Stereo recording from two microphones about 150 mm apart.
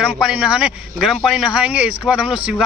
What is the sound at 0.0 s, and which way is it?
Speech, 5° right (ahead or behind).